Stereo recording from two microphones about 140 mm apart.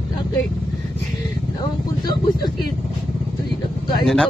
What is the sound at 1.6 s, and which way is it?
Speech, 30° left (ahead or behind).